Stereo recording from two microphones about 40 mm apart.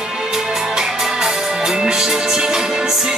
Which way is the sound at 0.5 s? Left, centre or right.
Centre.